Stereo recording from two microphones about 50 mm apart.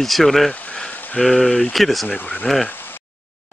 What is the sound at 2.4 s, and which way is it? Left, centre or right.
Speech, centre.